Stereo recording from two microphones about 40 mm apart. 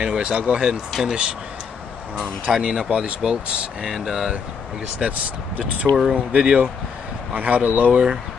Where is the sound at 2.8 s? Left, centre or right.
Right.